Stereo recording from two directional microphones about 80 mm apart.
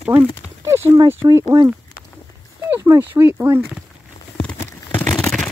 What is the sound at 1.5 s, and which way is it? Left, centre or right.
Speech, right.